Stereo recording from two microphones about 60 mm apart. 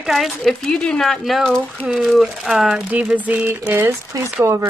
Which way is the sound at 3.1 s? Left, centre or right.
Right.